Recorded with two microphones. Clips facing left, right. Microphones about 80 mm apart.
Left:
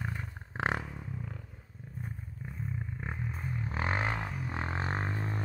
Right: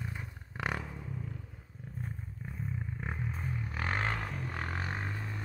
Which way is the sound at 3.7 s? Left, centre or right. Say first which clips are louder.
Left 2 dB; centre.